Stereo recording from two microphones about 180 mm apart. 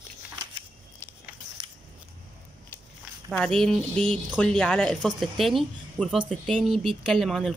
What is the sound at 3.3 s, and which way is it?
Speech, centre (ahead or behind).